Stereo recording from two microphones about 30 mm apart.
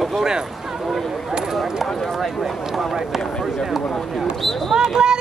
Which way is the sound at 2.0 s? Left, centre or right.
Centre.